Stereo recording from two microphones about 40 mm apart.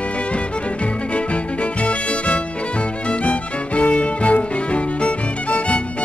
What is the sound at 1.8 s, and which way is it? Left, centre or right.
Music, left.